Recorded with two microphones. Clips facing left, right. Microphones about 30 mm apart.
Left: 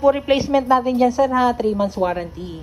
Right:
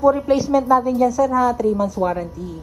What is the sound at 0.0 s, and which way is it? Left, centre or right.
A woman's voice, left.